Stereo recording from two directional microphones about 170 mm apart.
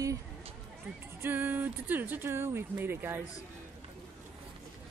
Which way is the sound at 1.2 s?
10° right (ahead or behind).